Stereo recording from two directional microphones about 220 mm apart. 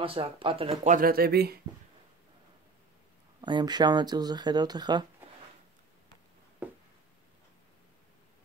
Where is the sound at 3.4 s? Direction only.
20° right (ahead or behind).